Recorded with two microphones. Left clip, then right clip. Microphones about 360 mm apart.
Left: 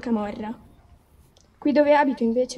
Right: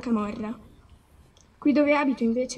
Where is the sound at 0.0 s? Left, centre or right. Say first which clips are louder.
Left 2 dB; left.